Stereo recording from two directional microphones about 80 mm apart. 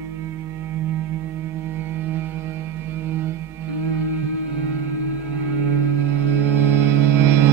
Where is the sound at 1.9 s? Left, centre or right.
Right.